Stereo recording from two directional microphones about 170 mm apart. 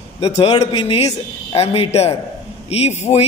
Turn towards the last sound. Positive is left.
turn(degrees=40)  # may be behind; listen again after turning